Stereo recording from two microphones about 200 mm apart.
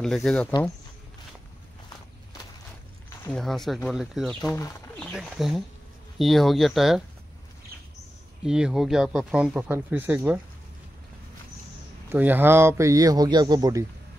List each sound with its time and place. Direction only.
0.0 s speech: centre (ahead or behind)
3.3 s speech: centre (ahead or behind)
4.5 s speech: 10° left (ahead or behind)
8.5 s speech: 5° right (ahead or behind)
12.1 s speech: 10° right (ahead or behind)